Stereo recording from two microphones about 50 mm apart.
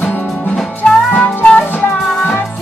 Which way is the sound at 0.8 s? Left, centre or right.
Left.